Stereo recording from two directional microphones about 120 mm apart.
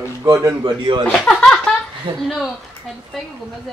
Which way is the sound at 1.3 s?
5° left (ahead or behind).